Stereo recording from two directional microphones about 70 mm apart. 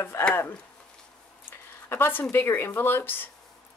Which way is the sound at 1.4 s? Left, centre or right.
Left.